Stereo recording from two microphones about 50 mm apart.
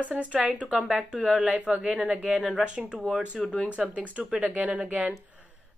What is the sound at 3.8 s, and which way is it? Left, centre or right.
A woman's voice, right.